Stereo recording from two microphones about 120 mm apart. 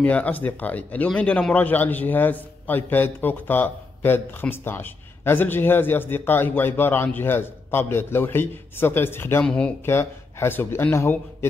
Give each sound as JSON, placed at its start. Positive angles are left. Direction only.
{"t": 0.0, "sound": "speech", "side_deg": 10}
{"t": 9.4, "sound": "speech", "side_deg": 10}
{"t": 9.8, "sound": "speech", "side_deg": 20}